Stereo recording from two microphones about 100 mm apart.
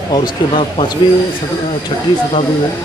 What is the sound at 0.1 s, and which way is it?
Speech, 55° left (ahead or behind).